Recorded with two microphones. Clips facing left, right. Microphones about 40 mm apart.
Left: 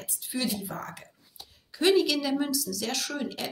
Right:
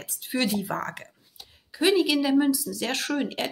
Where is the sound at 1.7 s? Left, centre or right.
Centre; by 3.4 s right.